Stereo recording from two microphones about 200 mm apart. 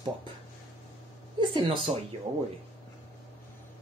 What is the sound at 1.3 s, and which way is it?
Speech, 25° right (ahead or behind).